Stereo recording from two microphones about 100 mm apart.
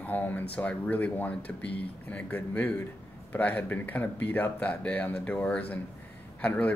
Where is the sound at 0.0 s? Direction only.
15° left (ahead or behind).